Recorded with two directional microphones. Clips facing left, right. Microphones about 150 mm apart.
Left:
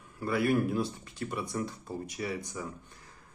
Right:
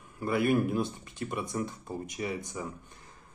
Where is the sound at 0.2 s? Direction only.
20° right (ahead or behind).